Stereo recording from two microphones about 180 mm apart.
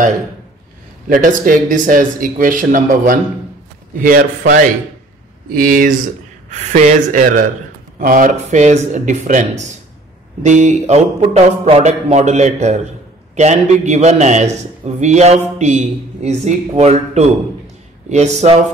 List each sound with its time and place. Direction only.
1.0 s speech: 50° right (ahead or behind)
5.5 s speech: 50° right (ahead or behind)